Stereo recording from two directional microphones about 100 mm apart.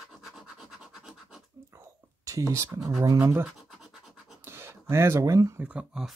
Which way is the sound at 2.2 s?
30° right (ahead or behind).